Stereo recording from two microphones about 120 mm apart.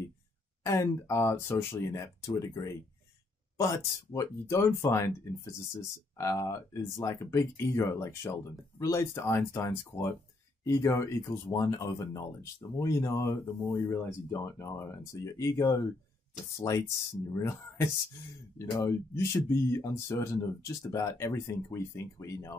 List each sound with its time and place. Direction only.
0.7 s speech: 25° left (ahead or behind)